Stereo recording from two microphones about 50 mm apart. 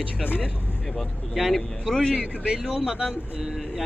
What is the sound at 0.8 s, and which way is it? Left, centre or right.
Speech, centre.